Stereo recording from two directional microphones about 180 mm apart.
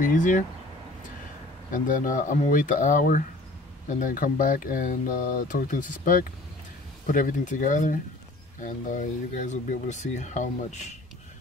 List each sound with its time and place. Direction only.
0.0 s speech: 45° left (ahead or behind)
1.7 s speech: 45° left (ahead or behind)